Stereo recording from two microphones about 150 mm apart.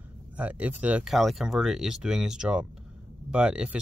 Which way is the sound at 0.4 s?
10° right (ahead or behind).